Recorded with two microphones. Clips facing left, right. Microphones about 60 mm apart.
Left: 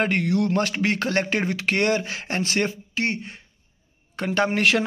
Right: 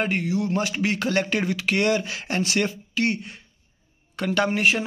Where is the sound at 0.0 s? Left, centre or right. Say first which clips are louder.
Left 3 dB; left.